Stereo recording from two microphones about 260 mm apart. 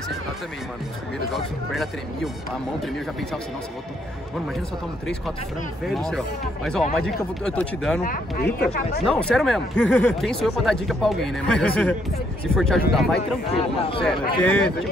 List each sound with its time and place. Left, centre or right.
1.3 s speech: centre
5.9 s speech: centre
8.0 s speech: left
9.0 s speech: centre
13.5 s speech: left
14.4 s speech: centre